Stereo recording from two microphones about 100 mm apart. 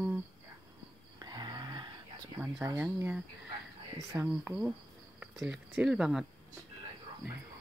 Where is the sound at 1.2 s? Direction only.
45° right (ahead or behind).